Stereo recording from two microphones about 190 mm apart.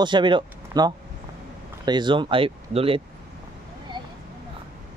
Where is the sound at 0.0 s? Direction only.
25° right (ahead or behind).